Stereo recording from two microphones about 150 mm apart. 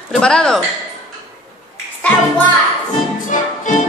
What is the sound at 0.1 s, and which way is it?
Speech, 5° left (ahead or behind).